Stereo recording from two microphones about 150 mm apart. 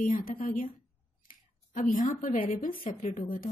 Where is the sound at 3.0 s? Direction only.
60° left (ahead or behind).